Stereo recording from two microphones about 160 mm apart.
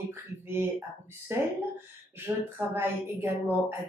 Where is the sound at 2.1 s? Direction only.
15° right (ahead or behind).